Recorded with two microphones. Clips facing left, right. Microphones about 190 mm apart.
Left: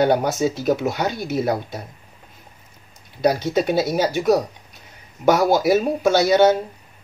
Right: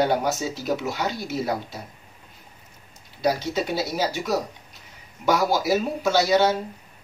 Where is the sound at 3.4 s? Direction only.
50° left (ahead or behind).